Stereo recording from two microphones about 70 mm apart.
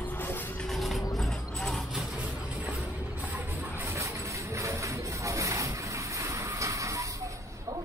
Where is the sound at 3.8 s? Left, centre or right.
Right.